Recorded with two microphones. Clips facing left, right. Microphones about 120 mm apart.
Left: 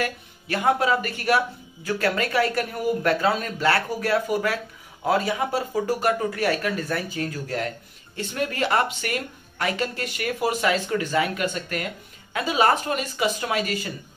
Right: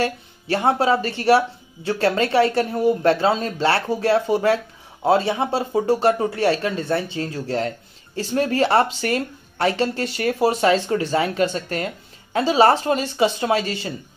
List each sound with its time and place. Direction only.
0.0 s speech: 30° right (ahead or behind)